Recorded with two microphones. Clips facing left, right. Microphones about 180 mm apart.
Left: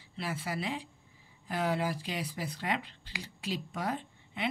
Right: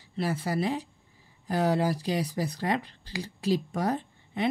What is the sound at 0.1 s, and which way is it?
Speech, 40° right (ahead or behind).